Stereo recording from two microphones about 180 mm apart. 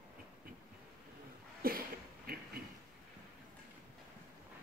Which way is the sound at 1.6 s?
55° right (ahead or behind).